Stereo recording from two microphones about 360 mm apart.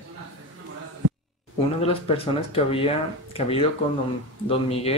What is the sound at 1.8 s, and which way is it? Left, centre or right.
Speech, centre.